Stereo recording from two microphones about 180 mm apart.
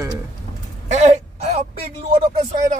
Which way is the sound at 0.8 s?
40° right (ahead or behind).